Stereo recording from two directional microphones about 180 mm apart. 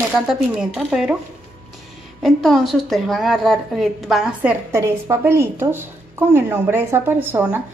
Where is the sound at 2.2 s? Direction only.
Centre (ahead or behind).